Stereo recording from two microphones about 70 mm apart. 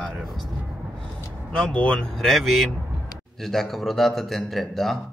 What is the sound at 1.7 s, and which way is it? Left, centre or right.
Speech, centre.